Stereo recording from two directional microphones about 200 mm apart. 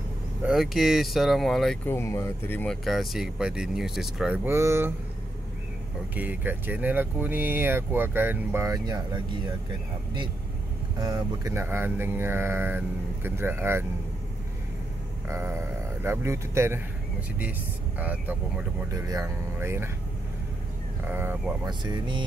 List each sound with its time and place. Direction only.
0.4 s speech: 5° right (ahead or behind)
2.0 s speech: 15° left (ahead or behind); by 4.4 s centre (ahead or behind)
4.5 s speech: 15° right (ahead or behind)
6.1 s speech: 10° right (ahead or behind)
11.0 s speech: 20° right (ahead or behind)
15.2 s speech: 15° right (ahead or behind)
21.1 s speech: 10° right (ahead or behind)
21.6 s speech: 20° right (ahead or behind)